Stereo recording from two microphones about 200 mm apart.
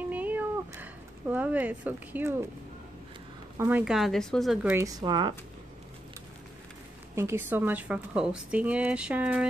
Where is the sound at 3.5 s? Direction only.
10° right (ahead or behind).